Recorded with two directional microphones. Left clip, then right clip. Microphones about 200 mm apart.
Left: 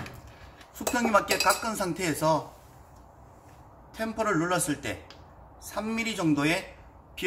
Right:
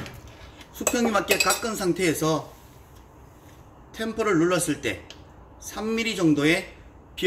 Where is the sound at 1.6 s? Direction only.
45° left (ahead or behind).